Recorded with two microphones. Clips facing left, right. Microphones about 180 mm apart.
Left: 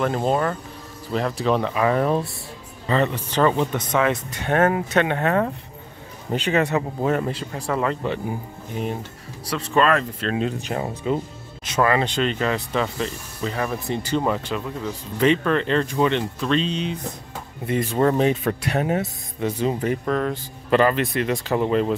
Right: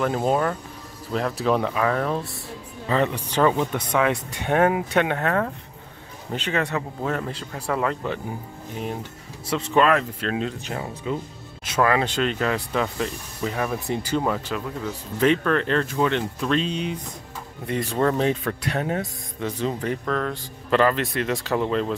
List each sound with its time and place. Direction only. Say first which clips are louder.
0.0 s speech: left 1 dB; 5° right (ahead or behind)
1.8 s speech: left 3 dB; 15° left (ahead or behind)
2.9 s speech: left 1 dB; 10° right (ahead or behind)
5.1 s speech: left 2 dB; 10° left (ahead or behind)
7.6 s speech: left 1 dB; centre (ahead or behind)
9.5 s speech: even; 20° right (ahead or behind)
9.8 s speech: even; 10° right (ahead or behind)
10.7 s speech: left 4 dB; 35° left (ahead or behind)
11.6 s speech: left 1 dB; 5° right (ahead or behind)
17.9 s speech: left 2 dB; 10° left (ahead or behind)
21.6 s speech: left 6 dB; 15° left (ahead or behind)